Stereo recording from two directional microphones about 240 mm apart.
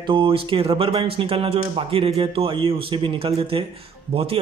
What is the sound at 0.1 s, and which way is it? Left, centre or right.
A man's voice, right.